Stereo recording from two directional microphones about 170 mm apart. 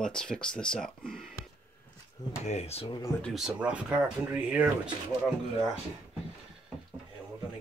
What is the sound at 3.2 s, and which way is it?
Speech, centre (ahead or behind).